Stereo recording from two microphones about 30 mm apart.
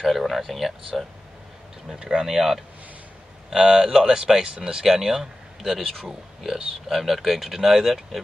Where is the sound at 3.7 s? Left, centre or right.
Centre.